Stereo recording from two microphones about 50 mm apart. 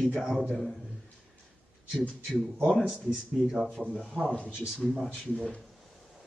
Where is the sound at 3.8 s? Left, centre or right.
Left.